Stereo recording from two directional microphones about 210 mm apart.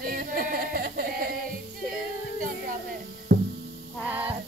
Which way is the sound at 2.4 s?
45° right (ahead or behind).